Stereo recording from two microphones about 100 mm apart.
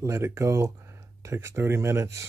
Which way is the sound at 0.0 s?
25° right (ahead or behind).